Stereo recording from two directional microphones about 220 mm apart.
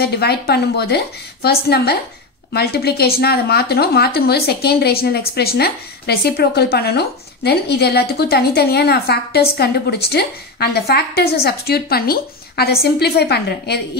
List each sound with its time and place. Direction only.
0.0 s speech: 45° left (ahead or behind)